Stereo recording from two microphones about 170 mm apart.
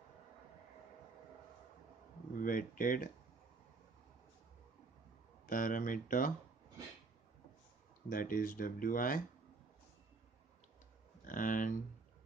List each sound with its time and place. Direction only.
2.3 s speech: 55° left (ahead or behind)
5.5 s speech: 50° left (ahead or behind)
8.1 s speech: 55° left (ahead or behind)
11.2 s speech: 50° left (ahead or behind)